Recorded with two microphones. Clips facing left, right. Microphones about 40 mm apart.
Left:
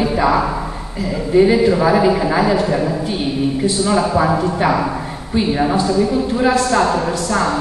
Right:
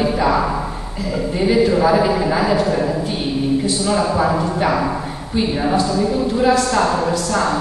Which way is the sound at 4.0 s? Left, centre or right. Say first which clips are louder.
Left 1 dB; centre.